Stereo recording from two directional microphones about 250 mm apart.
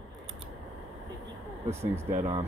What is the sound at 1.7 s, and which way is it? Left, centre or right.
Speech, centre.